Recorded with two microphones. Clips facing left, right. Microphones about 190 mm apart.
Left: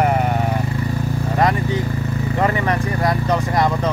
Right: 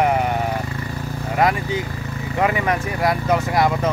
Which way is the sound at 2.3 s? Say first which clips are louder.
Even; 5° right (ahead or behind).